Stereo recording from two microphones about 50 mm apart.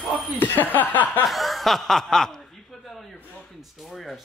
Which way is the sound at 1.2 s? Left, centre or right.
Centre.